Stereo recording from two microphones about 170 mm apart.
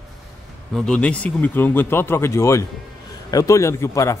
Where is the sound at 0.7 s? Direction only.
5° left (ahead or behind).